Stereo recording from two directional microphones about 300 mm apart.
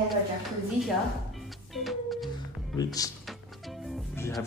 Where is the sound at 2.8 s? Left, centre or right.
Centre.